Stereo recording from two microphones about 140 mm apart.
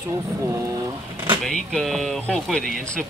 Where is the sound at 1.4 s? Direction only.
5° left (ahead or behind).